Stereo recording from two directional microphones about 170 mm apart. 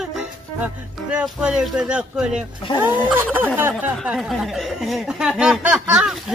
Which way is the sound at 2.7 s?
30° left (ahead or behind).